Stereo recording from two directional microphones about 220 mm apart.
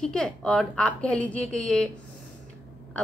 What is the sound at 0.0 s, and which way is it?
A woman's voice, 5° left (ahead or behind).